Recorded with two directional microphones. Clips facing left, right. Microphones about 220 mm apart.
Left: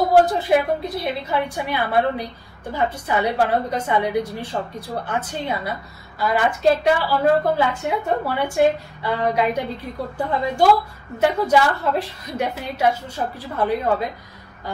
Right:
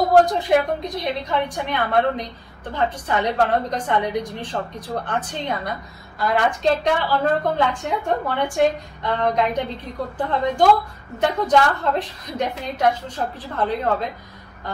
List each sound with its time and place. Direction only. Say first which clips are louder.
0.1 s a woman's voice: right 1 dB; 5° left (ahead or behind)